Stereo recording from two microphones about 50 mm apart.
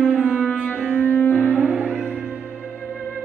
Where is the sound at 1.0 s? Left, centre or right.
Left.